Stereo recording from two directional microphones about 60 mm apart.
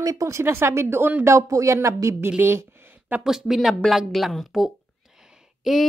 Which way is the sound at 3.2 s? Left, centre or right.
Centre.